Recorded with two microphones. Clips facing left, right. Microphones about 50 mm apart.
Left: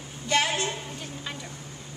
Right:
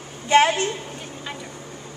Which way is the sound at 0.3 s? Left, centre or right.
Right.